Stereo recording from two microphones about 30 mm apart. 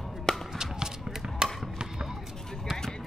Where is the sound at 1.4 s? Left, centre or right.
Right.